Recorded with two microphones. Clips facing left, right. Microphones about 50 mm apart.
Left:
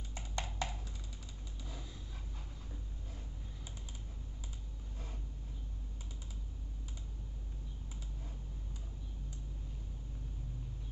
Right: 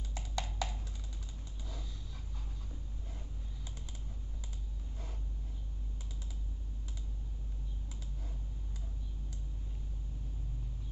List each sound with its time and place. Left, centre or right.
0.1 s music: left